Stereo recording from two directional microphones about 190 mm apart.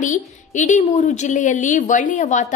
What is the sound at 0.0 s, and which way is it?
A woman's voice, 40° left (ahead or behind).